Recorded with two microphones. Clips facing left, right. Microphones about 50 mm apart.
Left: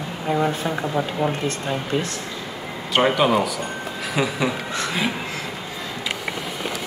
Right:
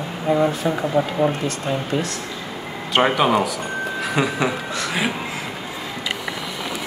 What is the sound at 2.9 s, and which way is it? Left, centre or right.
Speech, centre.